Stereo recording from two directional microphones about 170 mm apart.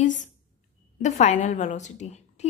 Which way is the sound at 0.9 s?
45° left (ahead or behind).